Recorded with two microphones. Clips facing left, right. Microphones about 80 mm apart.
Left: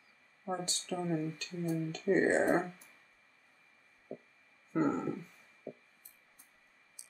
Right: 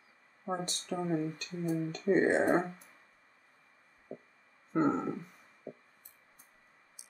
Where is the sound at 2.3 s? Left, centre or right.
Centre.